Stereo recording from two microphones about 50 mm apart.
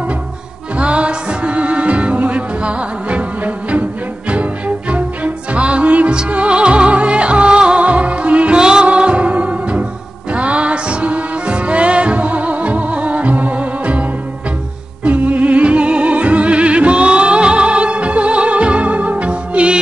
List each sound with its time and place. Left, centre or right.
0.7 s music: right
15.0 s music: right